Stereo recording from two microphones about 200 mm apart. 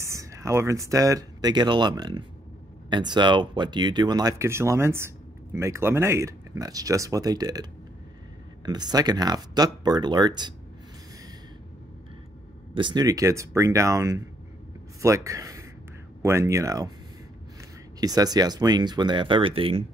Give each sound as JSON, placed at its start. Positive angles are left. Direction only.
{"t": 0.0, "sound": "speech", "side_deg": -15}
{"t": 8.6, "sound": "speech", "side_deg": -20}
{"t": 12.7, "sound": "speech", "side_deg": -20}